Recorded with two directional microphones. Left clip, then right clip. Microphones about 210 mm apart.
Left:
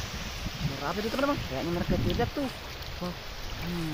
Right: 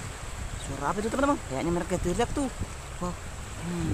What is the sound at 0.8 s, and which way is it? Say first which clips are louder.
Speech: right 3 dB; 20° right (ahead or behind).